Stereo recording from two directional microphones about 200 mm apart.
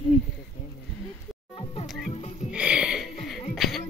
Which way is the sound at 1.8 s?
Centre (ahead or behind).